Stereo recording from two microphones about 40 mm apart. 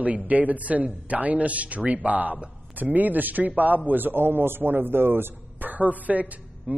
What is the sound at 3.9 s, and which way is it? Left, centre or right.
Speech, right.